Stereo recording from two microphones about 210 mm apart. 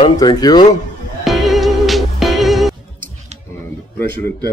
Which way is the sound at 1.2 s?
Centre (ahead or behind).